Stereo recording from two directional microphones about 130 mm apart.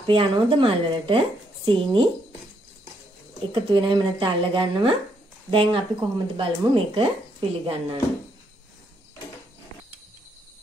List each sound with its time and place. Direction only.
0.0 s speech: 45° right (ahead or behind)
3.5 s speech: 40° right (ahead or behind)